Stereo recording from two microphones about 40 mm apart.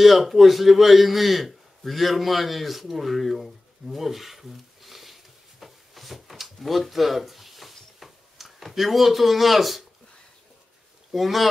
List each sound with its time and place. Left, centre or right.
0.0 s a man's voice: centre
1.8 s a sound: centre
11.1 s speech: centre